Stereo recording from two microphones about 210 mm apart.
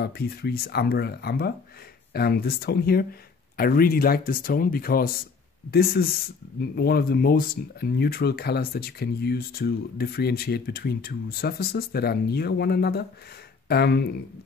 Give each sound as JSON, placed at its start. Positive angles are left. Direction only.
{"t": 0.0, "sound": "speech", "side_deg": 45}